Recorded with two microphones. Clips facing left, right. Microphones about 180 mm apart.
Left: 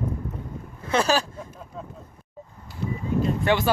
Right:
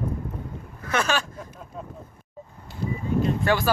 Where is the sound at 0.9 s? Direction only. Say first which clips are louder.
Left 3 dB; 35° left (ahead or behind).